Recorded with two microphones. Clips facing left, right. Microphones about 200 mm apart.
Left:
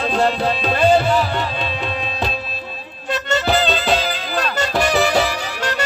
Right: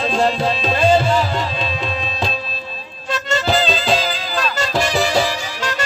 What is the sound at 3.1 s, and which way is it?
Music, 60° left (ahead or behind).